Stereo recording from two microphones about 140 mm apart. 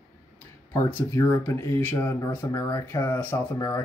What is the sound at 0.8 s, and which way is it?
Speech, 15° left (ahead or behind).